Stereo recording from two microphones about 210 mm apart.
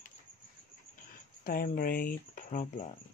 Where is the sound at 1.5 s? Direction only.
45° left (ahead or behind).